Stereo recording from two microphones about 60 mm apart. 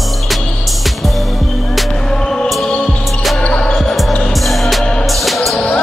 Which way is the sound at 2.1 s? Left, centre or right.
Centre.